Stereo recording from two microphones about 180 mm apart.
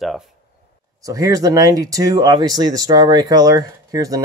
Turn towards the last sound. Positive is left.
turn(degrees=-20)  # may be behind; listen again after turning